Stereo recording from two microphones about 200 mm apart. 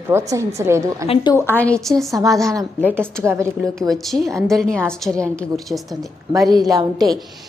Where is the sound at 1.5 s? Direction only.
5° left (ahead or behind).